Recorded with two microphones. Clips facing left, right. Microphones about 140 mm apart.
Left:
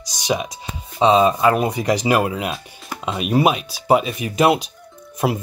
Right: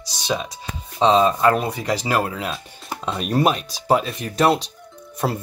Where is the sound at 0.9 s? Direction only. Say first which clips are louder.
Left 2 dB; 10° left (ahead or behind).